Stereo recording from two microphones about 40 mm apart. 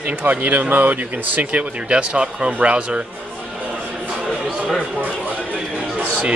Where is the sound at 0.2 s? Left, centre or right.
Right.